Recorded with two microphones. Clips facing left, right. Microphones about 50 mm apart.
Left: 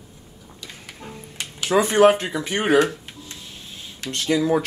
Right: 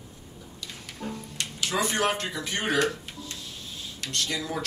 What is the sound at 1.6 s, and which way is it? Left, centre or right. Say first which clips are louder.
Speech: left 11 dB; left.